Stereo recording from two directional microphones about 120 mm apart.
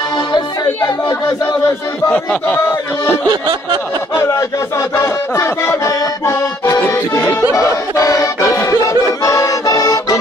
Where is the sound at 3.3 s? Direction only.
40° right (ahead or behind).